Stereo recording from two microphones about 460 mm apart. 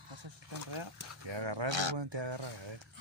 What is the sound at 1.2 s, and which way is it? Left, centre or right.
Speech, right.